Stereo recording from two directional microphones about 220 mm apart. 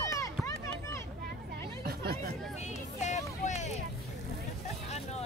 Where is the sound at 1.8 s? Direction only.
45° right (ahead or behind).